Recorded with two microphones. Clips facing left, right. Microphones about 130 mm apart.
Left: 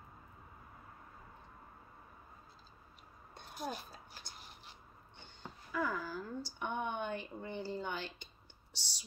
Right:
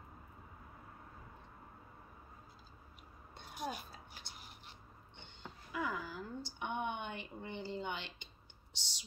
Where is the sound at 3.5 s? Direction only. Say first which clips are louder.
Even; 15° right (ahead or behind).